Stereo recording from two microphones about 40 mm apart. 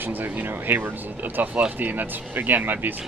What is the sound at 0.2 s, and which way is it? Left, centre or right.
Speech, right.